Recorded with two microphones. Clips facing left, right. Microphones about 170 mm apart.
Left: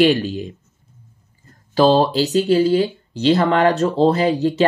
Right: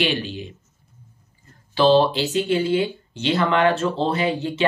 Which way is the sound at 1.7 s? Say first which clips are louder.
Left 2 dB; 40° left (ahead or behind).